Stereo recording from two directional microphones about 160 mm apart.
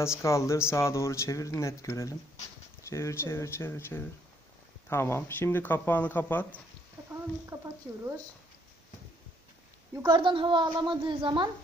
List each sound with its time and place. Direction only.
0.2 s speech: 20° left (ahead or behind)
7.4 s speech: 15° right (ahead or behind)
10.0 s a woman's voice: 30° right (ahead or behind)